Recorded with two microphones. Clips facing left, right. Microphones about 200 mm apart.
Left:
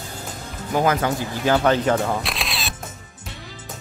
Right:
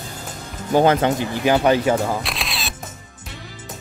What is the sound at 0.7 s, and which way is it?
Speech, 30° right (ahead or behind).